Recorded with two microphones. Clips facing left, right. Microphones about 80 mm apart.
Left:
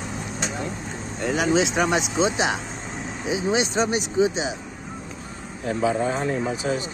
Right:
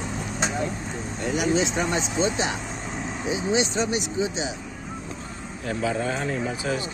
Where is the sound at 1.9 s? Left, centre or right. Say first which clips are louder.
Left 2 dB; centre.